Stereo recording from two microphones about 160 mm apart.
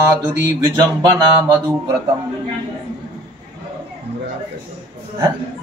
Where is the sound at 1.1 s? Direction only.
25° right (ahead or behind).